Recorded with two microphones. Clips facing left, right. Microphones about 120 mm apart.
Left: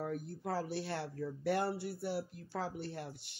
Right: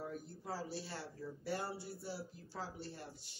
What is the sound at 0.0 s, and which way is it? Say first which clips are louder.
Speech: left 6 dB; 60° left (ahead or behind).